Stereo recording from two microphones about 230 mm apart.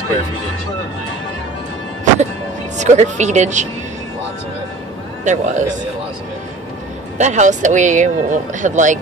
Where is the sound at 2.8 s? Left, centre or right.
Right.